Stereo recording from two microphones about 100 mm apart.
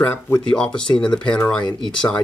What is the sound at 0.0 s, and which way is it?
Speech, 20° left (ahead or behind).